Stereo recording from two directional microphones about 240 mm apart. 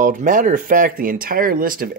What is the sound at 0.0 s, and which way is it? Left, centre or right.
Speech, right.